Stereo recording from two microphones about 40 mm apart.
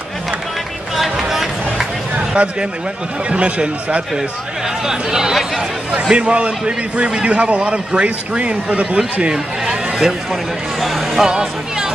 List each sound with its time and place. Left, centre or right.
0.9 s music: centre
2.1 s a sound: right
3.3 s speech: right
4.8 s speech: centre
6.1 s a man's voice: right
9.3 s a sound: centre
10.8 s speech: centre